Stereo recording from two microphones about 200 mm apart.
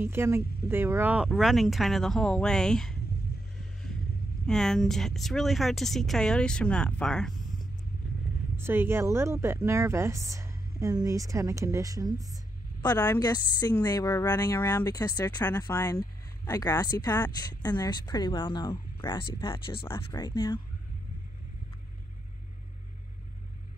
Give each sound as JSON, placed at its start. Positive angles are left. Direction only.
{"t": 0.0, "sound": "speech", "side_deg": -10}
{"t": 4.5, "sound": "speech", "side_deg": 5}
{"t": 8.5, "sound": "speech", "side_deg": -10}
{"t": 12.8, "sound": "a woman's voice", "side_deg": 20}